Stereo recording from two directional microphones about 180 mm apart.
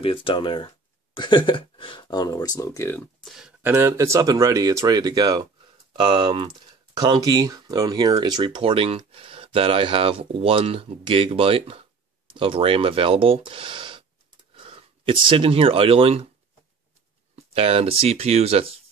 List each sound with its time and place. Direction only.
0.0 s speech: 30° left (ahead or behind); by 16.3 s 30° right (ahead or behind)
17.5 s speech: 35° right (ahead or behind)